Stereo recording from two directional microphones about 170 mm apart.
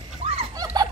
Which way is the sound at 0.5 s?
25° right (ahead or behind).